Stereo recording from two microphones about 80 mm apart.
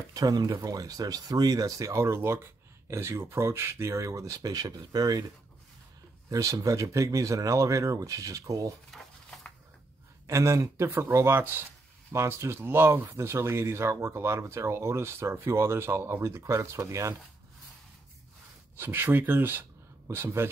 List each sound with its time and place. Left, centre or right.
0.1 s speech: right
1.9 s speech: right
6.3 s speech: right
8.9 s a sound: centre
10.2 s speech: right
18.8 s speech: right